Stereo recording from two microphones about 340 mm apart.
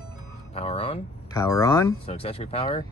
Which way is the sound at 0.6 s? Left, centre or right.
Centre.